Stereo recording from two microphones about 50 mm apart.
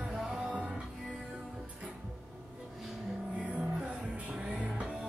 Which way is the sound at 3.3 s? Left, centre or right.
Right.